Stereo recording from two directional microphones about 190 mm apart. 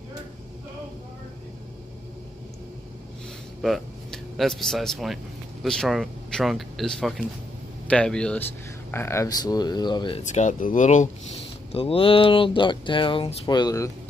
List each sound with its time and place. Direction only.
3.6 s speech: centre (ahead or behind); by 13.9 s 15° left (ahead or behind)